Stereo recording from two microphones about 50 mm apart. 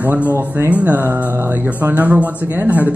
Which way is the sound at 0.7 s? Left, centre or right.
Right.